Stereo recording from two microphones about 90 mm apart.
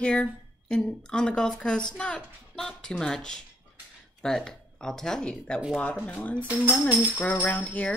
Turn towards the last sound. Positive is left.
turn(degrees=15)  # may be behind; listen again after turning